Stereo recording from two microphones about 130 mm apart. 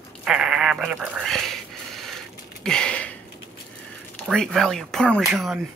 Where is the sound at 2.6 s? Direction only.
5° left (ahead or behind).